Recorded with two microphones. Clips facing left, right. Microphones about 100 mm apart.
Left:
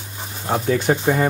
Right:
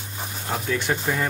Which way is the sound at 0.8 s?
35° left (ahead or behind).